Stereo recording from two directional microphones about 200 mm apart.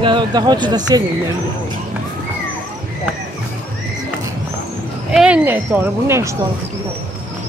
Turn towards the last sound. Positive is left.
turn(degrees=-15)  # may be behind; listen again after turning